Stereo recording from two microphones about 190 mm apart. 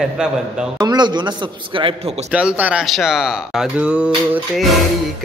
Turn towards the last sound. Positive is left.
turn(degrees=-5)  # may be behind; listen again after turning